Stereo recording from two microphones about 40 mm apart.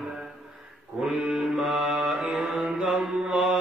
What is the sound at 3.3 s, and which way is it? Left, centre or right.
Mantra, centre.